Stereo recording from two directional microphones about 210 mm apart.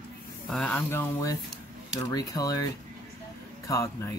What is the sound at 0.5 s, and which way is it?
Speech, 5° left (ahead or behind).